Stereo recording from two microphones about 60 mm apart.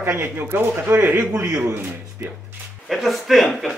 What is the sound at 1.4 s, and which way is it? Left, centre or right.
Speech, right.